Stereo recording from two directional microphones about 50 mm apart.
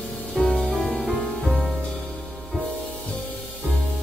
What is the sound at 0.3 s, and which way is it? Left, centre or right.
Music, centre.